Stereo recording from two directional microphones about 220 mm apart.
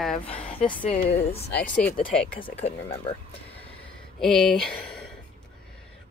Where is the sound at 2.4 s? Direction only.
30° left (ahead or behind).